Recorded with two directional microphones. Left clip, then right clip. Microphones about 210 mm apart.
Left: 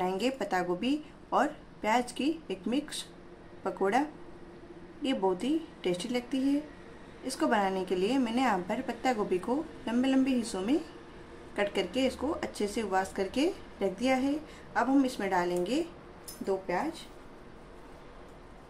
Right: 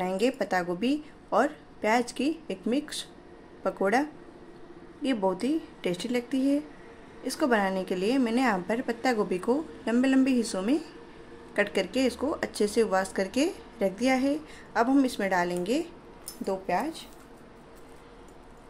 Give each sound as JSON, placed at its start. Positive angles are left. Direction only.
{"t": 0.0, "sound": "speech", "side_deg": -20}
{"t": 5.0, "sound": "speech", "side_deg": -20}